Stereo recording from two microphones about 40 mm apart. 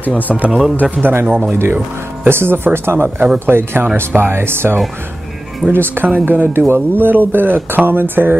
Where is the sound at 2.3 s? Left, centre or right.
Right.